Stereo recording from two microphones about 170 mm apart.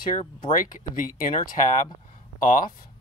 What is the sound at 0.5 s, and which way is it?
Speech, 50° left (ahead or behind).